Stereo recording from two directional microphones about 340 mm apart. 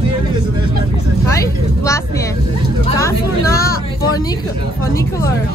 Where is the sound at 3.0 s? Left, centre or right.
Centre.